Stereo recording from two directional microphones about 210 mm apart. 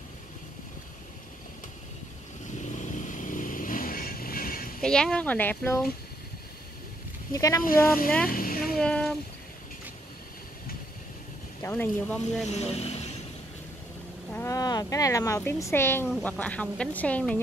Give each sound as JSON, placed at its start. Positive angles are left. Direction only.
{"t": 2.7, "sound": "vehicle", "side_deg": 35}
{"t": 4.8, "sound": "speech", "side_deg": 5}
{"t": 7.3, "sound": "speech", "side_deg": 15}
{"t": 8.3, "sound": "a sound", "side_deg": 45}
{"t": 8.7, "sound": "a sound", "side_deg": 5}
{"t": 11.6, "sound": "speech", "side_deg": 10}
{"t": 12.4, "sound": "speech", "side_deg": 30}
{"t": 14.3, "sound": "a woman's voice", "side_deg": 15}